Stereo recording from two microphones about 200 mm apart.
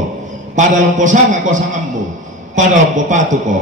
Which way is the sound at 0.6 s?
40° right (ahead or behind).